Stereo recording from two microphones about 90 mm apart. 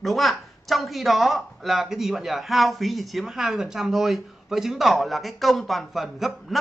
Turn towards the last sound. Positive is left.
turn(degrees=0)  # may be behind; listen again after turning